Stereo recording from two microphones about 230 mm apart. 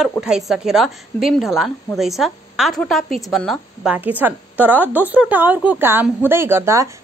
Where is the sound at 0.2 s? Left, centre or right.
Centre.